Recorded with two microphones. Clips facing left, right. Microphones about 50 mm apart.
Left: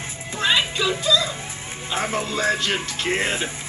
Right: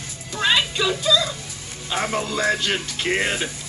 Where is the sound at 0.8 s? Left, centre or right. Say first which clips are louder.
Right 1 dB; centre.